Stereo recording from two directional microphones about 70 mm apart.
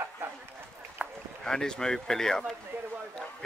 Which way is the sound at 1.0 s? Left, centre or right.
Centre.